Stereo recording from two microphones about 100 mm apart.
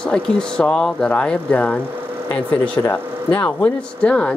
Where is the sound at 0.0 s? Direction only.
10° left (ahead or behind).